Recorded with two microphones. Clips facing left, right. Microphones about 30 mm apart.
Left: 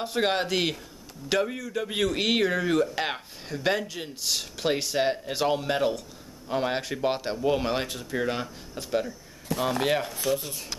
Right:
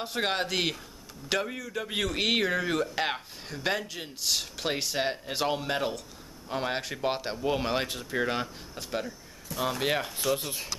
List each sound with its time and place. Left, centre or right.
0.0 s speech: centre
9.8 s speech: centre
10.3 s speech: right